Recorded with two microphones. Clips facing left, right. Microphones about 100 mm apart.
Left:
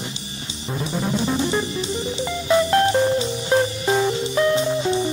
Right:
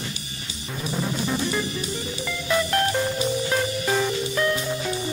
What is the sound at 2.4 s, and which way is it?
Music, 25° left (ahead or behind).